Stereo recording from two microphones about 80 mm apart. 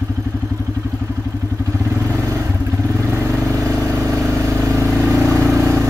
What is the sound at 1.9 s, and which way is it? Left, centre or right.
Vehicle, right.